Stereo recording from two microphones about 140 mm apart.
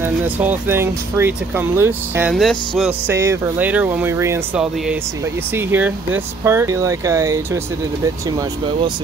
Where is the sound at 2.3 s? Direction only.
Centre (ahead or behind).